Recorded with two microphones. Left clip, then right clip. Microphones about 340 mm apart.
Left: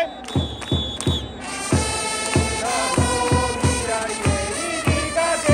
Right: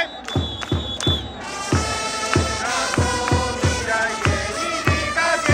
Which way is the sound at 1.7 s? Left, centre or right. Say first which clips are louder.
Even; left.